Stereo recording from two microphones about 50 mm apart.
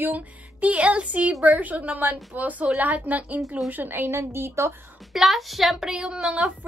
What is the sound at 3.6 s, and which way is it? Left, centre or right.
Speech, right.